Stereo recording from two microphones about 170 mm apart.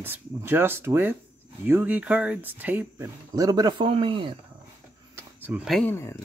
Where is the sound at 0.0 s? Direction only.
10° right (ahead or behind); by 4.3 s 30° right (ahead or behind).